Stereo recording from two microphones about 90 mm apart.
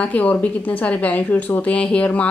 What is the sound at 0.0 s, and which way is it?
A woman's voice, 15° left (ahead or behind).